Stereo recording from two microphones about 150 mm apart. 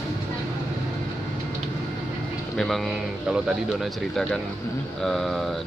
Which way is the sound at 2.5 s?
Centre (ahead or behind).